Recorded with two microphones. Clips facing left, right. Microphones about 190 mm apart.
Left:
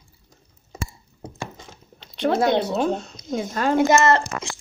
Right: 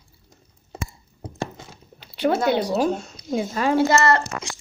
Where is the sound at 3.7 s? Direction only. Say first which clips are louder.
Left 2 dB; 20° left (ahead or behind).